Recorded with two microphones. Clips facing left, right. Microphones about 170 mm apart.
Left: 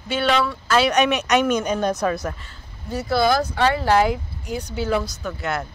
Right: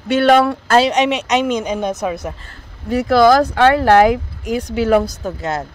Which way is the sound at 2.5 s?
90° right.